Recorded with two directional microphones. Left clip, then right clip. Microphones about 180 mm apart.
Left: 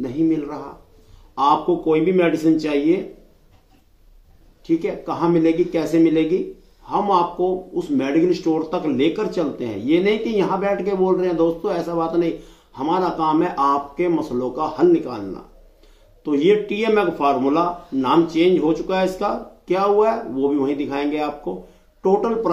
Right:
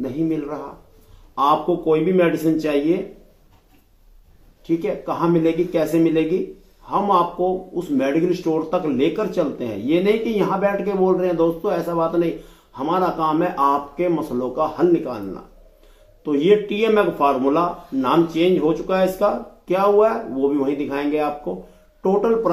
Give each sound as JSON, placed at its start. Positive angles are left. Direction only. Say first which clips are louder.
{"t": 0.0, "sound": "speech", "louder": "left 2 dB", "side_deg": 0}
{"t": 4.6, "sound": "speech", "louder": "even", "side_deg": 0}